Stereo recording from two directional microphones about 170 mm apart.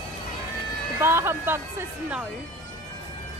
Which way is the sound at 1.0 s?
15° right (ahead or behind).